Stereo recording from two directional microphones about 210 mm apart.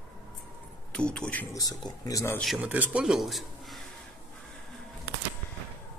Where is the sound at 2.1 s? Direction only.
15° left (ahead or behind).